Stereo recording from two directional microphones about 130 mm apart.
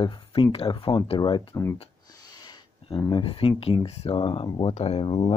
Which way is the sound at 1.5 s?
20° left (ahead or behind).